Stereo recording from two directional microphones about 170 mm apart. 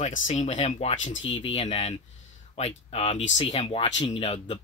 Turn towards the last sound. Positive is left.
turn(degrees=35)  # may be behind; listen again after turning